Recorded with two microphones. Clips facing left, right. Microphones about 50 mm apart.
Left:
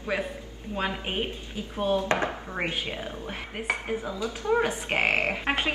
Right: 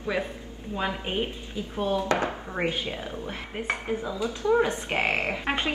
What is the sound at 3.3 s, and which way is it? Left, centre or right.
A woman's voice, centre.